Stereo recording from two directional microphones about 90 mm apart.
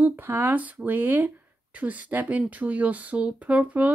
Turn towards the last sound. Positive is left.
turn(degrees=-15)  # may be behind; listen again after turning